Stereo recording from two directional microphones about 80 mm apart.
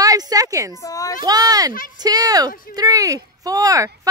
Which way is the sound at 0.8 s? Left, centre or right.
Left.